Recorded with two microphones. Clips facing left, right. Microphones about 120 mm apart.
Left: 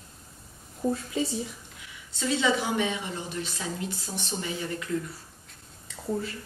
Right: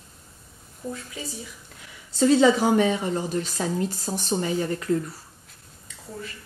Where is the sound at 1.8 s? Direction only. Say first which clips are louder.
Right 13 dB; 40° right (ahead or behind).